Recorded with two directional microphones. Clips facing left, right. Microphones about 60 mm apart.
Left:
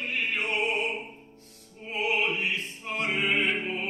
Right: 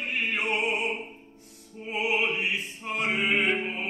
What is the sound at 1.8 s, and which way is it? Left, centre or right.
Opera, centre.